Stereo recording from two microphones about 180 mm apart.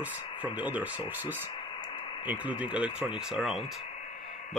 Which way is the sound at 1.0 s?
25° left (ahead or behind).